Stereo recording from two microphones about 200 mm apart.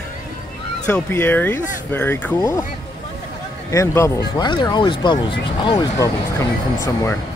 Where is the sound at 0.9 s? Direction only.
10° left (ahead or behind).